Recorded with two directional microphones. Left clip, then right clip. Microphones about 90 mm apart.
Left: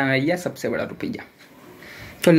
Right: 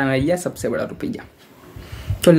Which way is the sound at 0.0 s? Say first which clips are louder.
Right 2 dB; 40° right (ahead or behind).